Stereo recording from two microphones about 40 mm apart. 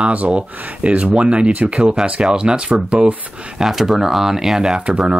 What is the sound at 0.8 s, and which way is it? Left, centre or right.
Speech, right.